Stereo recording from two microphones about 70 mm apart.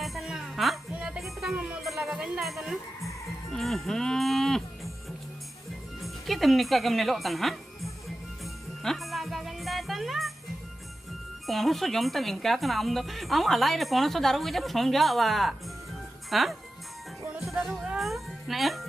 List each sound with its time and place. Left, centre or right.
0.0 s music: centre
1.8 s music: centre
2.0 s music: centre
2.4 s speech: centre
3.4 s livestock: centre
6.0 s speech: centre
8.8 s music: centre
11.4 s speech: centre
17.6 s music: centre